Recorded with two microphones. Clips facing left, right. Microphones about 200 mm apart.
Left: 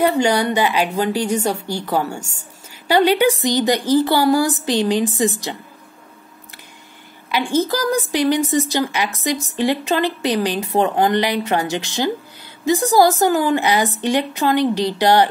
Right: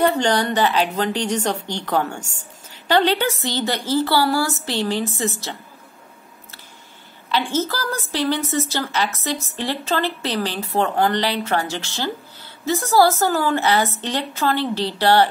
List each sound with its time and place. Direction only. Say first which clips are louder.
0.0 s a woman's voice: left 2 dB; 10° left (ahead or behind)
7.2 s a woman's voice: left 3 dB; 15° left (ahead or behind)